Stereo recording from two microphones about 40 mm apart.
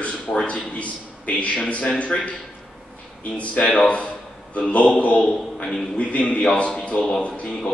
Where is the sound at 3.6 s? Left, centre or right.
Left.